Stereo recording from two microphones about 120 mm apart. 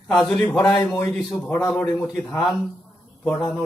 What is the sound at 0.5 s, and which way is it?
Speech, 25° left (ahead or behind).